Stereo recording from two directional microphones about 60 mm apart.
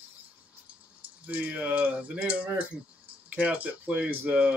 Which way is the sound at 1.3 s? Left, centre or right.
Right.